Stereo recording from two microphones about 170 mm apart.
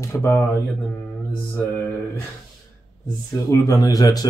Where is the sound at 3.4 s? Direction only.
20° left (ahead or behind).